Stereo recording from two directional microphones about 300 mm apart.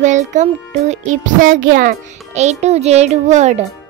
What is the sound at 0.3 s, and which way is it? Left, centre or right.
A child's voice, right.